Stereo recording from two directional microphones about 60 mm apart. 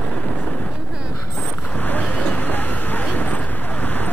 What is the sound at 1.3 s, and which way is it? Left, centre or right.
Vehicle, left.